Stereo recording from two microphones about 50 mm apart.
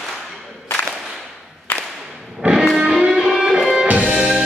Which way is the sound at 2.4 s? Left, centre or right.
Right.